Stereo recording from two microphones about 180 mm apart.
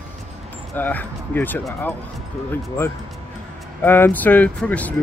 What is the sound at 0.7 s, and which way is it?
Speech, 10° left (ahead or behind).